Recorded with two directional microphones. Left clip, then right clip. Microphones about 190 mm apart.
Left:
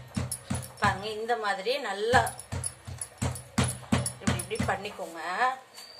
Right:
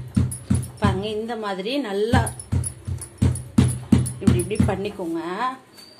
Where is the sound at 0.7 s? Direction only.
20° right (ahead or behind).